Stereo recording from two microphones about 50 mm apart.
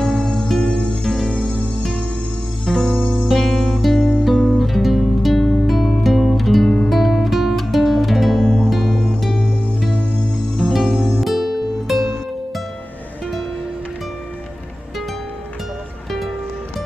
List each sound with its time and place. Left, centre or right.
0.0 s music: centre
1.0 s music: centre
1.3 s music: centre
1.8 s music: centre
10.7 s music: centre
16.1 s music: centre